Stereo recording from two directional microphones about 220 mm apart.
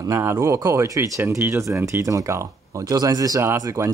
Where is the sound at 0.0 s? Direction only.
15° right (ahead or behind).